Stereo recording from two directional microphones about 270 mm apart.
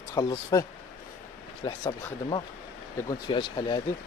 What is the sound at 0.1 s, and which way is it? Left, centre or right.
Speech, centre.